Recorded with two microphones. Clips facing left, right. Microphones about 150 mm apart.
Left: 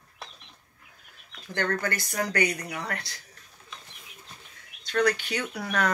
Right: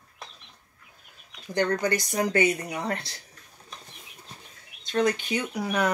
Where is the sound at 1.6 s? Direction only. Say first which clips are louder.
Right 4 dB; 20° right (ahead or behind).